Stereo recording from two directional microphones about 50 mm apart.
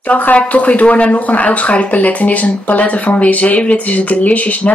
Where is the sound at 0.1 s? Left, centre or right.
Left.